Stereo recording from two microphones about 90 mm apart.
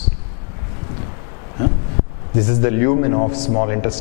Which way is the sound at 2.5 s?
15° left (ahead or behind).